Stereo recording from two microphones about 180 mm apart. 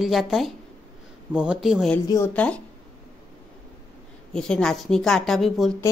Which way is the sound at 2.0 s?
15° left (ahead or behind).